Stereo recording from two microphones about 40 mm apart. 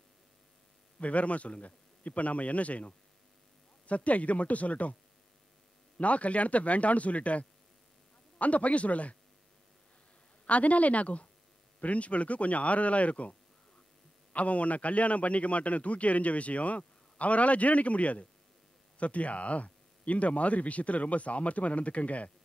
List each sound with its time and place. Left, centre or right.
0.9 s a man's voice: left
5.9 s a man's voice: left
10.4 s a man's voice: left